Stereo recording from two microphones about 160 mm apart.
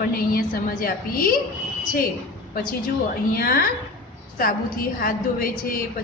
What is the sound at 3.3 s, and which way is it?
Speech, 65° left (ahead or behind).